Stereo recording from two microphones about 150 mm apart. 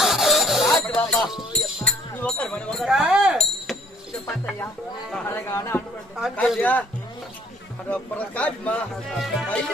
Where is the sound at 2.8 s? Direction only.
5° right (ahead or behind).